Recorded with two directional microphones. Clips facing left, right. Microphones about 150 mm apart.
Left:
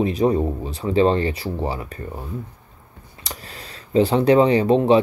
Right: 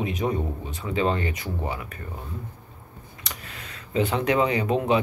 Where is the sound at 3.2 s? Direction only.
35° left (ahead or behind).